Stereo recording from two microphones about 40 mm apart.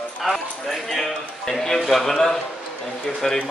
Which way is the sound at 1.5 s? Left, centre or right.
Centre.